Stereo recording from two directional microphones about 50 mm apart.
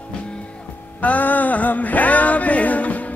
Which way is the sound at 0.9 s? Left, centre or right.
Left.